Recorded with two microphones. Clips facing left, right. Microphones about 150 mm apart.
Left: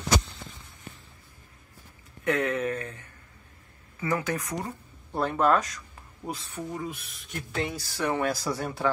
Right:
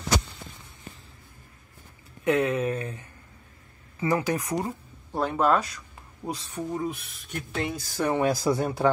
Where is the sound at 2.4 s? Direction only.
15° right (ahead or behind).